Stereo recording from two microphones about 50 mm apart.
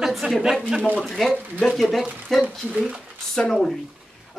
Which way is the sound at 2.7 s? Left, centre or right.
Right.